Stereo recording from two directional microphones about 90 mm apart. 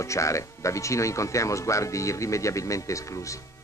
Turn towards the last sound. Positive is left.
turn(degrees=35)  # may be behind; listen again after turning